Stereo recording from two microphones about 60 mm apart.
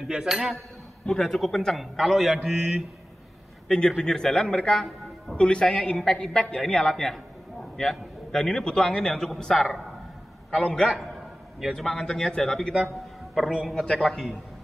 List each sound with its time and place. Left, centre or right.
0.0 s a man's voice: centre
1.0 s a man's voice: centre
3.6 s a man's voice: centre
12.8 s a sound: centre
13.7 s a man's voice: centre